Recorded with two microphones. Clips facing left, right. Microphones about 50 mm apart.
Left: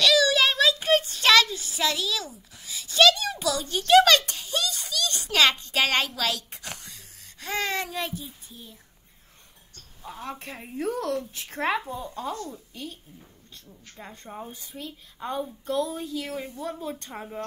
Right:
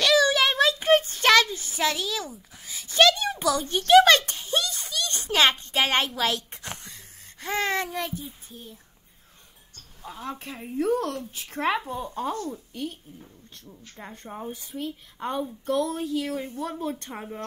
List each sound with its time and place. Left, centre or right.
0.0 s child singing: right
4.3 s a sound: right
8.1 s a woman's voice: right
10.4 s a woman's voice: left
10.9 s a woman's voice: right
11.3 s speech: left
11.9 s a woman's voice: right
14.6 s a woman's voice: right